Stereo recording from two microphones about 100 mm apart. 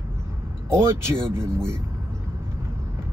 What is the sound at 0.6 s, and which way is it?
Speech, 25° right (ahead or behind).